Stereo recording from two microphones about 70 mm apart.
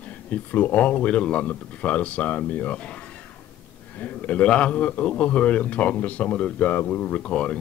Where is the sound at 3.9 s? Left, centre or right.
Left.